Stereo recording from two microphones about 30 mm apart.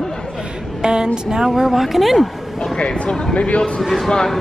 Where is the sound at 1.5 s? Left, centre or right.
Centre.